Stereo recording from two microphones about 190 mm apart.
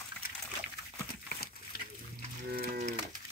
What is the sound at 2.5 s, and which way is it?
Cattle, 45° right (ahead or behind).